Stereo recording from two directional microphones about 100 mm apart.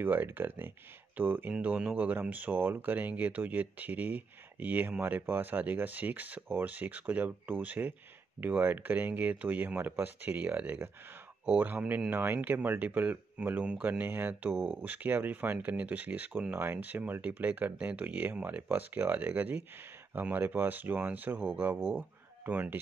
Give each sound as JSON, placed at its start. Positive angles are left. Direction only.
{"t": 0.0, "sound": "speech", "side_deg": -20}